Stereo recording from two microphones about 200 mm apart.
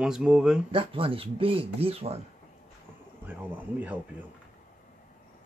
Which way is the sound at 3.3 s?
10° right (ahead or behind).